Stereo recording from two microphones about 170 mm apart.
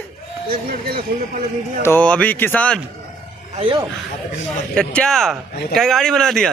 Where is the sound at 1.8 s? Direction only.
10° left (ahead or behind).